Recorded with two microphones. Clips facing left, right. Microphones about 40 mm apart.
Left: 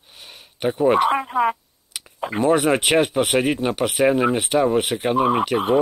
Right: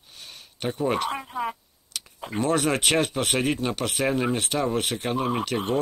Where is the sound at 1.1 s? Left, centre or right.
Left.